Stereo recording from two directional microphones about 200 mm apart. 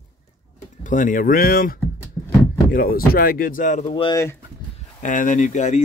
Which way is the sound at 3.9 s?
20° left (ahead or behind).